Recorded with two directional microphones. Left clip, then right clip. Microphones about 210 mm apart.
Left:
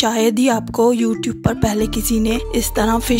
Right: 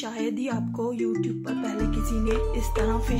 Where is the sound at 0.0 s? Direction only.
50° left (ahead or behind).